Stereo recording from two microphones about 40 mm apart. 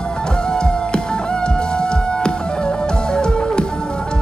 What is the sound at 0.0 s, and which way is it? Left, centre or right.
Music, left.